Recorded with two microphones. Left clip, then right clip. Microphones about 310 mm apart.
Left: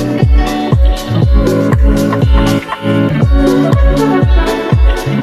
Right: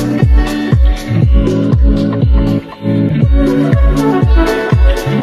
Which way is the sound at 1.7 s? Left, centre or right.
Left.